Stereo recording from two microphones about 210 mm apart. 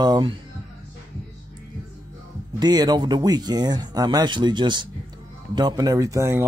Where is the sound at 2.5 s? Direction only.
20° right (ahead or behind).